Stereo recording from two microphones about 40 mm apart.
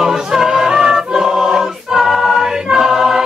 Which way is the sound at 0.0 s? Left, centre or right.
Centre.